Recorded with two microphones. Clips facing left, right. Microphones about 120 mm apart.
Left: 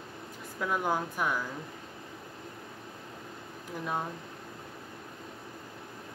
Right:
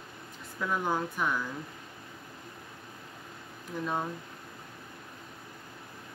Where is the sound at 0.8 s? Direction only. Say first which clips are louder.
Even; 10° left (ahead or behind).